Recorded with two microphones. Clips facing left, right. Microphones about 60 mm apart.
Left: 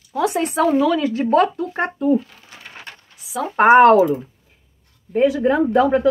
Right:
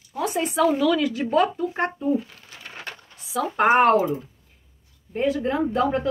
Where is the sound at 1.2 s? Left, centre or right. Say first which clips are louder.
Left 4 dB; left.